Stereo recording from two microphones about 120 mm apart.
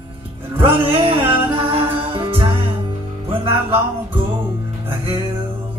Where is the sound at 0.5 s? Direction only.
50° right (ahead or behind).